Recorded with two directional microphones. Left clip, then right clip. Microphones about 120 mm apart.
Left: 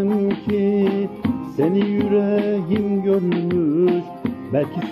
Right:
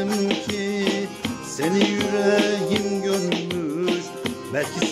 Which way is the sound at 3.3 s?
25° right (ahead or behind).